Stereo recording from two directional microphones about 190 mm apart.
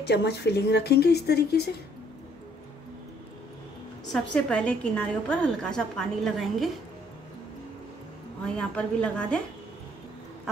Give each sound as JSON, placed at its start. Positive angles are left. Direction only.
{"t": 0.0, "sound": "speech", "side_deg": 60}
{"t": 4.0, "sound": "a woman's voice", "side_deg": 5}
{"t": 8.5, "sound": "a woman's voice", "side_deg": 5}